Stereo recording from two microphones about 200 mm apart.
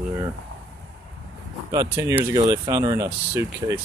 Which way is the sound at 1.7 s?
15° right (ahead or behind).